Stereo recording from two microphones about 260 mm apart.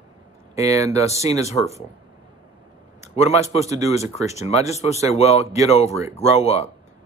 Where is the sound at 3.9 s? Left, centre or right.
Left.